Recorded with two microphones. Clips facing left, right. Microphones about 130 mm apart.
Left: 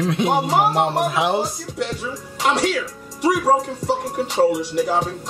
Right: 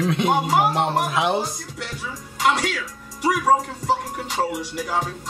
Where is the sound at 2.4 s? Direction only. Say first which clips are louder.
Left 2 dB; 30° left (ahead or behind).